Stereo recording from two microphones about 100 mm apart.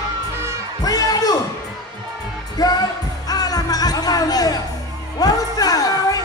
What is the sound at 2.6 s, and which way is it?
Music, 40° left (ahead or behind).